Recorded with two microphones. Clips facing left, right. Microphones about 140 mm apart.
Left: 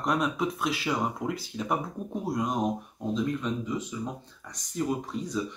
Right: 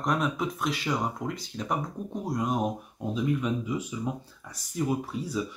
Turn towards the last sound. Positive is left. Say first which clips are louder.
# even
turn(degrees=-5)  # may be behind; listen again after turning